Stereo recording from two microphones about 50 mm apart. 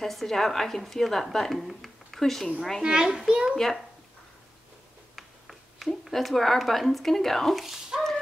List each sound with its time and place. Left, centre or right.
0.0 s a woman's voice: centre
2.8 s a child's voice: centre
3.5 s a woman's voice: centre
5.1 s speech: centre
7.6 s speech: centre